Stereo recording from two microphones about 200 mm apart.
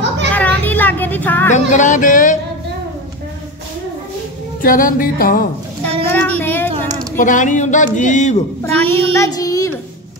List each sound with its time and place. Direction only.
0.3 s children playing: 10° left (ahead or behind)
1.5 s speech: 40° left (ahead or behind)
4.6 s speech: 45° left (ahead or behind)
6.0 s speech: 10° left (ahead or behind)
7.2 s speech: 40° left (ahead or behind)
8.7 s child singing: 10° left (ahead or behind)